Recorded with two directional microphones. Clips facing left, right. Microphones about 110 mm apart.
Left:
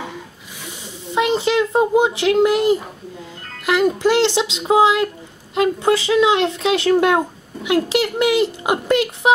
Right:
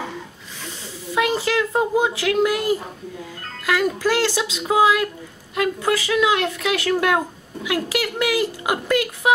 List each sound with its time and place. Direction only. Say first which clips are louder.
0.7 s a child's voice: even; 20° left (ahead or behind)